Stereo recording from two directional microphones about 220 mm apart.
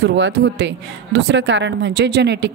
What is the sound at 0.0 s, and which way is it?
A woman's voice, 55° right (ahead or behind).